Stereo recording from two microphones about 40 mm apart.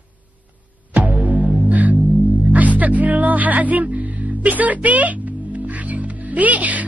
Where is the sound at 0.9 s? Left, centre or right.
Right.